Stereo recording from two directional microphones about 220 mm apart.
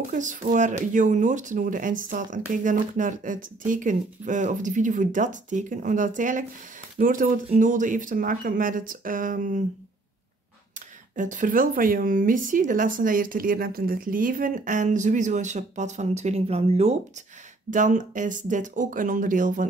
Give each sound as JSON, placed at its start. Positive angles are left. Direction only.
{"t": 0.1, "sound": "speech", "side_deg": -35}
{"t": 11.1, "sound": "speech", "side_deg": -35}